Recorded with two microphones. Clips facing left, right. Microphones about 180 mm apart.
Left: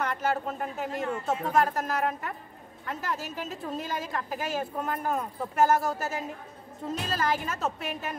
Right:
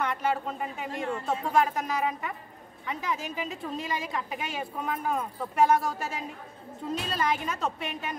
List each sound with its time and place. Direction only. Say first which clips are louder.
0.0 s a woman's voice: even; centre (ahead or behind)